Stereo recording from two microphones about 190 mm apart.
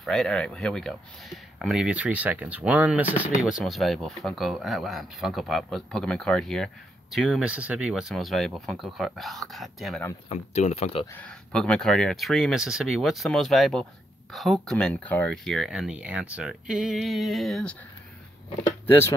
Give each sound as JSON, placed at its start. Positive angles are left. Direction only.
{"t": 0.0, "sound": "speech", "side_deg": 0}
{"t": 10.3, "sound": "speech", "side_deg": 35}
{"t": 11.1, "sound": "speech", "side_deg": 5}
{"t": 18.9, "sound": "speech", "side_deg": 15}